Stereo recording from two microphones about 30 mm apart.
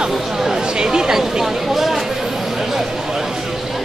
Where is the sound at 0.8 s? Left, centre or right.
Right.